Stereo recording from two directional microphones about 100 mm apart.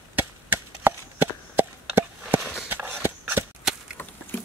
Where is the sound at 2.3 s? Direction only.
Centre (ahead or behind).